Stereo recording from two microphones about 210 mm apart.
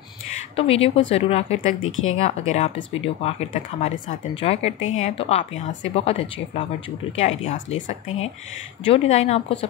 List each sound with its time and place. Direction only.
0.6 s speech: 25° left (ahead or behind)
1.8 s speech: 70° left (ahead or behind)
2.1 s speech: 30° left (ahead or behind)
8.8 s speech: 30° left (ahead or behind)